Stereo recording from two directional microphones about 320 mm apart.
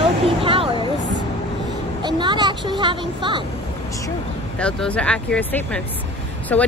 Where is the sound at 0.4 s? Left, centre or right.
Centre.